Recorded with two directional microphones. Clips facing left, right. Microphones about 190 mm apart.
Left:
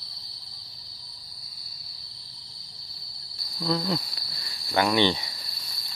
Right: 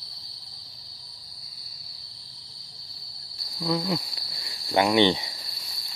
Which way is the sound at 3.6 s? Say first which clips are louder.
Even; 10° right (ahead or behind).